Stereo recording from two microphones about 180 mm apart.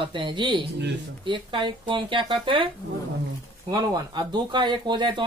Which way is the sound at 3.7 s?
20° right (ahead or behind).